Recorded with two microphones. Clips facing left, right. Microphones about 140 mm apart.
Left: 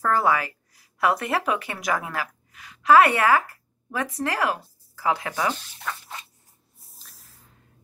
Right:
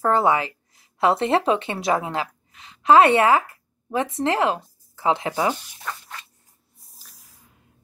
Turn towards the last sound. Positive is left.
turn(degrees=0)  # may be behind; listen again after turning